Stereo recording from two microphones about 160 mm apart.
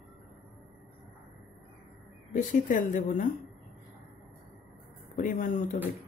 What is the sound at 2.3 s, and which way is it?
Speech, 55° left (ahead or behind).